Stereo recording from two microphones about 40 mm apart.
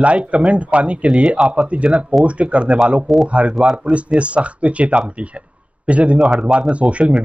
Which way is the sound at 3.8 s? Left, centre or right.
Right.